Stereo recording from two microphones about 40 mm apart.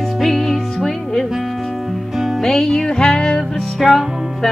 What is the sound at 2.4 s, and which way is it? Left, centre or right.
Music, centre.